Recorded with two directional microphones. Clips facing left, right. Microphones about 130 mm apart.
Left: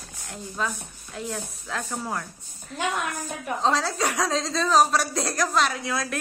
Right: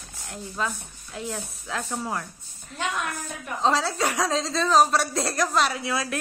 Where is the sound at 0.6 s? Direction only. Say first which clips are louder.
Even; centre (ahead or behind).